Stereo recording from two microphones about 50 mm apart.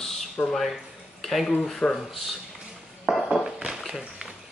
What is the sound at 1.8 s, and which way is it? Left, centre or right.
Speech, left.